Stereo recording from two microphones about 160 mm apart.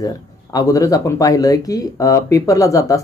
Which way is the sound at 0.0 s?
20° left (ahead or behind).